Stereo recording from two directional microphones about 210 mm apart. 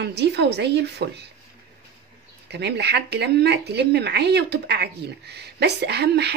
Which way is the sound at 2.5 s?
55° right (ahead or behind).